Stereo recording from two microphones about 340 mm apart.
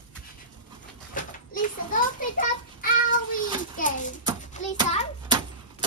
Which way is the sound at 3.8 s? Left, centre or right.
Left.